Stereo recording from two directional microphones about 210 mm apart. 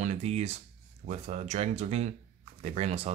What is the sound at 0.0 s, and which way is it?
Speech, 30° right (ahead or behind).